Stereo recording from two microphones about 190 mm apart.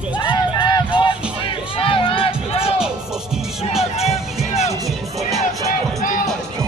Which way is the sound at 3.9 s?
35° left (ahead or behind).